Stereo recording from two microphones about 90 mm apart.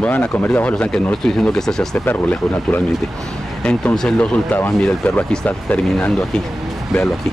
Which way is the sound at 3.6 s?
10° left (ahead or behind).